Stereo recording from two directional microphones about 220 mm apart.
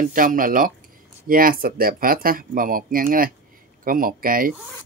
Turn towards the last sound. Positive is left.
turn(degrees=-40)  # may be behind; listen again after turning